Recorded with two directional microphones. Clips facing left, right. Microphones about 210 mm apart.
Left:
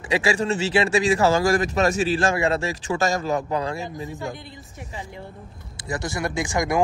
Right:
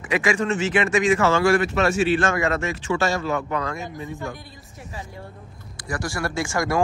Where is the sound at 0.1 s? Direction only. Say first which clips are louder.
Even; 30° left (ahead or behind).